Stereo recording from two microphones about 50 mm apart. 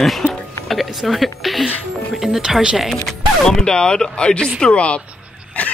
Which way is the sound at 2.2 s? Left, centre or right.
Centre.